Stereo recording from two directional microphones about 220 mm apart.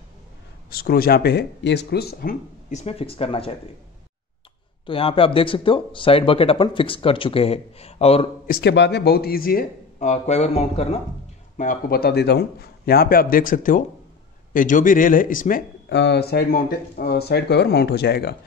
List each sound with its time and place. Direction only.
0.7 s speech: 45° left (ahead or behind)
2.7 s speech: 30° left (ahead or behind)
4.8 s speech: 25° left (ahead or behind)
8.5 s speech: 45° left (ahead or behind)
15.9 s speech: 50° left (ahead or behind)